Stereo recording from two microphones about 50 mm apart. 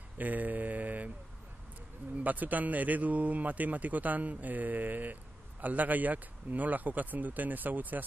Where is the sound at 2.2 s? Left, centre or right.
Right.